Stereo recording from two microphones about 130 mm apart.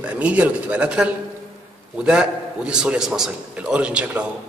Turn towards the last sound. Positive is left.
turn(degrees=-10)  # may be behind; listen again after turning